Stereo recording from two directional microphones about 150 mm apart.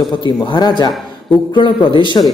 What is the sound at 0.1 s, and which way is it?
A man's voice, 30° left (ahead or behind).